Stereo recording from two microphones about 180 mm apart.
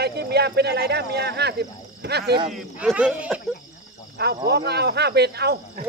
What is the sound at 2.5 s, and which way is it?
Speech, 5° right (ahead or behind).